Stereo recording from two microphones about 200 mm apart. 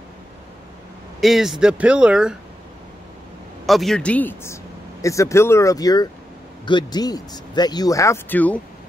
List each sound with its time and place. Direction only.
1.2 s speech: centre (ahead or behind)
3.6 s speech: centre (ahead or behind)